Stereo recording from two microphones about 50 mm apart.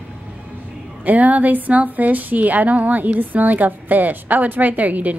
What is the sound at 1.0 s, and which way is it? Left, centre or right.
A woman's voice, right.